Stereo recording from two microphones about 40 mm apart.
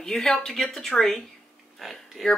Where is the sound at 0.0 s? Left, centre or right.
Centre.